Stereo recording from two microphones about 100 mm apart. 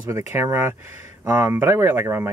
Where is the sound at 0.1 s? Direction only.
30° right (ahead or behind).